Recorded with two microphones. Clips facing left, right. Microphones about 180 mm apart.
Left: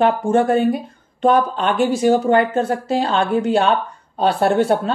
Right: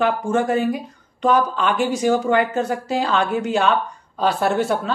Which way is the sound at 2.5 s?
30° left (ahead or behind).